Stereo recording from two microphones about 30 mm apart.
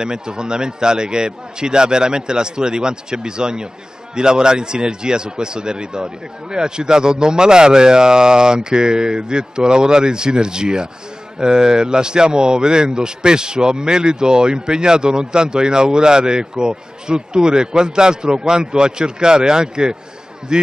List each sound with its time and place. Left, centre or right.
0.0 s speech: right